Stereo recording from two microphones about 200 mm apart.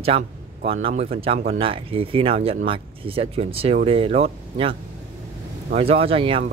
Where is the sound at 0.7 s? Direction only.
30° right (ahead or behind).